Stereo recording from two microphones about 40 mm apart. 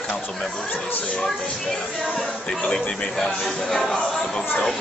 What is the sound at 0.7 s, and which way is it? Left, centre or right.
Speech, left.